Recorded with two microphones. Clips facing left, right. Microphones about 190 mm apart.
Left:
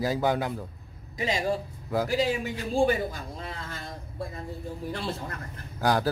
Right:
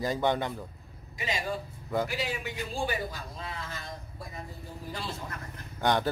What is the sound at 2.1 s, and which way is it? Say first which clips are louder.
A man's voice: left 8 dB; 40° left (ahead or behind).